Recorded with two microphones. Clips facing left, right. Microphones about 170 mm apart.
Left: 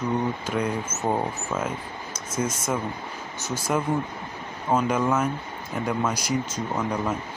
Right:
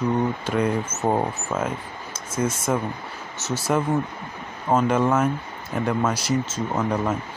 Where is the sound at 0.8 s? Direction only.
20° right (ahead or behind).